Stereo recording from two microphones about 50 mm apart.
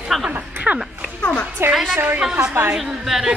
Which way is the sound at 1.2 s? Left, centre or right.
Left.